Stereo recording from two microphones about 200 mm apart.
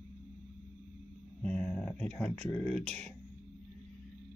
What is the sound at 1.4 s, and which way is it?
Speech, 5° left (ahead or behind).